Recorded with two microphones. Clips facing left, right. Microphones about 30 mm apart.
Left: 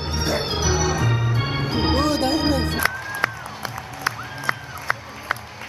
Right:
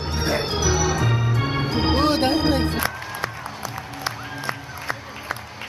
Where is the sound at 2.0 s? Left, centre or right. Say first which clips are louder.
Right 1 dB; right.